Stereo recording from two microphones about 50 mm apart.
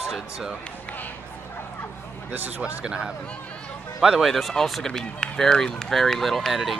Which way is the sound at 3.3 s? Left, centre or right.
Left.